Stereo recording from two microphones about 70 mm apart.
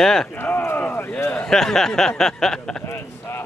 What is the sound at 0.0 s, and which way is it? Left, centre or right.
Speech, centre.